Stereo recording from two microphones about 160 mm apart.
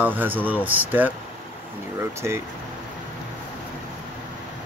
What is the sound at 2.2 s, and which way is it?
Speech, 15° right (ahead or behind).